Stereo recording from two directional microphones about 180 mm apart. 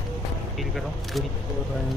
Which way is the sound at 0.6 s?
Centre (ahead or behind).